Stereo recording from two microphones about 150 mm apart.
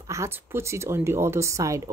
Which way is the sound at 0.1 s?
20° right (ahead or behind).